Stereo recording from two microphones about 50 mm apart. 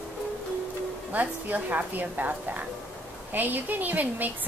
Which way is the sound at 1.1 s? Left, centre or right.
Right.